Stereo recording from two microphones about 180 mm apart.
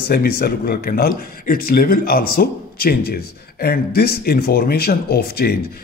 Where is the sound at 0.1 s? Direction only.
55° left (ahead or behind).